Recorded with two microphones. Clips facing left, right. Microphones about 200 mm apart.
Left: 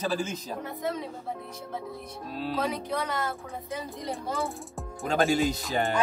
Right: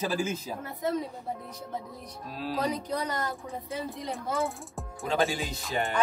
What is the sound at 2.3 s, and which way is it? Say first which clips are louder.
Speech: left 1 dB; 5° right (ahead or behind).